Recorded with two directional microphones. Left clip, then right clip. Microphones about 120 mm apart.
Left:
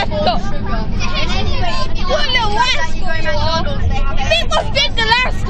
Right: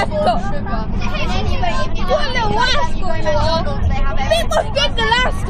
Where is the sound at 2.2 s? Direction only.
20° right (ahead or behind).